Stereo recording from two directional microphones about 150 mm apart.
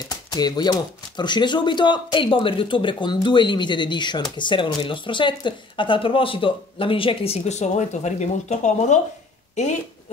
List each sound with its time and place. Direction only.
0.1 s speech: 25° left (ahead or behind); by 9.0 s 50° left (ahead or behind)